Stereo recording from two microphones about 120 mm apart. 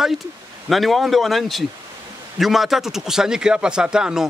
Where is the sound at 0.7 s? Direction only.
Centre (ahead or behind).